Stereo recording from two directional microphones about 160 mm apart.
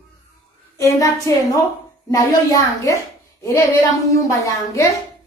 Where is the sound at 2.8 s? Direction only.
20° left (ahead or behind).